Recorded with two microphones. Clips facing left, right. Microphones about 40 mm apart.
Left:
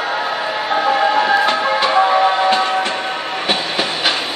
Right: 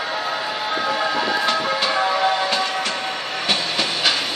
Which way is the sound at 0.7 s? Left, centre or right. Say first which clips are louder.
Left 8 dB; left.